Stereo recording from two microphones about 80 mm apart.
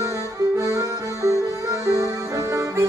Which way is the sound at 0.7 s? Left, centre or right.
Right.